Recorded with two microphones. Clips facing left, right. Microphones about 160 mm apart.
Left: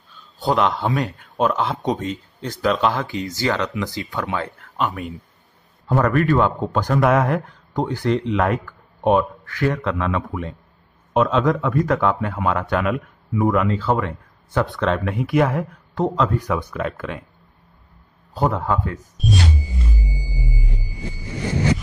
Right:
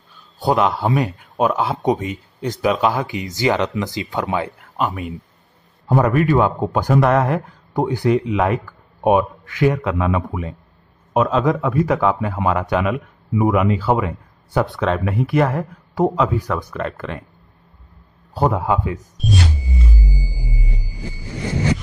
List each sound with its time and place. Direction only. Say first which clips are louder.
0.5 s a man's voice: right 2 dB; 5° right (ahead or behind)
3.3 s speech: right 5 dB; 15° right (ahead or behind)
4.5 s a man's voice: right 2 dB; centre (ahead or behind)
6.6 s speech: right 3 dB; 10° right (ahead or behind)
7.0 s a man's voice: even; centre (ahead or behind)
16.0 s speech: right 3 dB; 10° right (ahead or behind)
16.4 s a man's voice: even; centre (ahead or behind)
18.3 s speech: right 3 dB; 10° right (ahead or behind)